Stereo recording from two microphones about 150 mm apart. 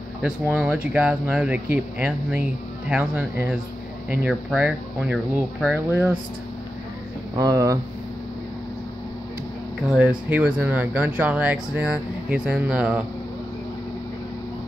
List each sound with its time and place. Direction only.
0.2 s speech: 10° right (ahead or behind)
7.3 s speech: 25° right (ahead or behind)
9.8 s speech: 5° right (ahead or behind)